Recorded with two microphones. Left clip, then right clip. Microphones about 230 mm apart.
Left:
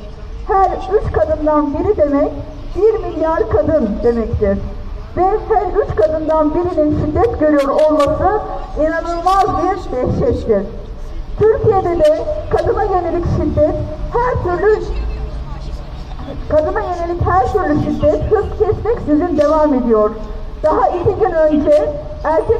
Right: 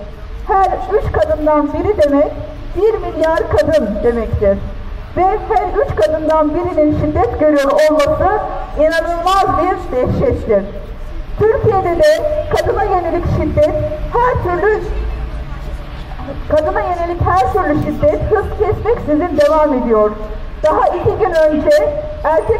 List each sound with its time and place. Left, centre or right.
0.5 s a woman's voice: right
16.4 s a woman's voice: right